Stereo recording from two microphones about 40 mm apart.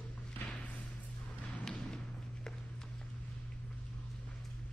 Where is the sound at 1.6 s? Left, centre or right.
Centre.